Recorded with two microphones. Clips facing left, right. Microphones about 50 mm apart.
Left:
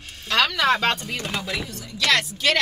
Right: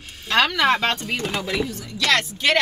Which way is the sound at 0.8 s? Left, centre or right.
Centre.